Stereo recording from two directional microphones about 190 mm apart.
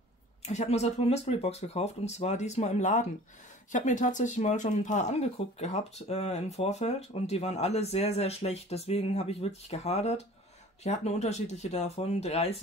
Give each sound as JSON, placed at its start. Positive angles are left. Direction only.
{"t": 0.4, "sound": "speech", "side_deg": 35}